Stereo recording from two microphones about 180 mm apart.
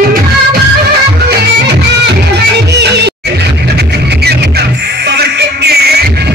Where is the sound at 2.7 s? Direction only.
70° right (ahead or behind).